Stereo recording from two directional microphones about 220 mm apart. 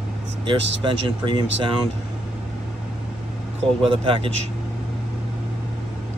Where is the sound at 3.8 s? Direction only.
25° right (ahead or behind).